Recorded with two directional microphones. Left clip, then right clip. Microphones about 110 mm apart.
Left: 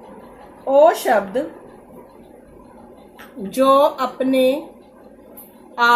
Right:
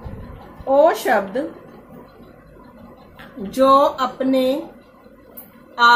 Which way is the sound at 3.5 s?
40° left (ahead or behind).